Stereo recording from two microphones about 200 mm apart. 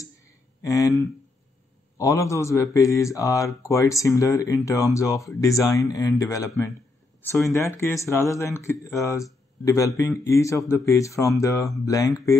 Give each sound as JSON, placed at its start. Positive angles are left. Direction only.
{"t": 0.6, "sound": "speech", "side_deg": 15}